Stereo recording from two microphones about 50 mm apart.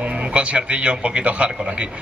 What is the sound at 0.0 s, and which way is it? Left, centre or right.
A man's voice, right.